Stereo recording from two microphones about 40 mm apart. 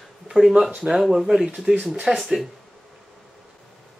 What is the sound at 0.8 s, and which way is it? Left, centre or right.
Speech, centre.